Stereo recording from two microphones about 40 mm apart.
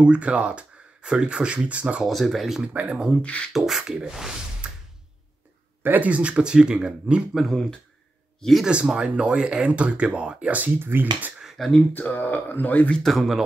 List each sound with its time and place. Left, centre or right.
0.0 s speech: right
2.0 s speech: centre
2.7 s speech: right
3.2 s speech: left
3.5 s beatboxing: centre
4.6 s music: right
5.8 s a sound: right
6.0 s speech: right
8.4 s speech: centre
8.6 s speech: right
10.8 s speech: right
11.6 s speech: centre
11.9 s speech: left
13.0 s speech: centre